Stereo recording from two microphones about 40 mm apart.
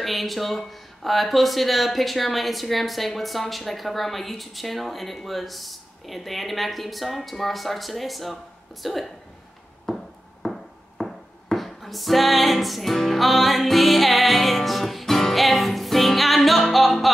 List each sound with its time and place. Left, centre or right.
0.0 s speech: centre
9.8 s music: centre